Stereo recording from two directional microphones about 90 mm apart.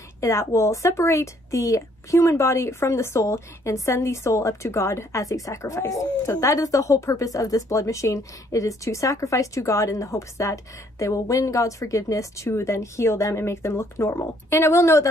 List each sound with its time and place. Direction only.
0.2 s a woman's voice: 35° left (ahead or behind)